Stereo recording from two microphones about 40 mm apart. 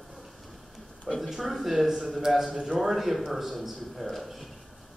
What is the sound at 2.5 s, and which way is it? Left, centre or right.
Speech, centre.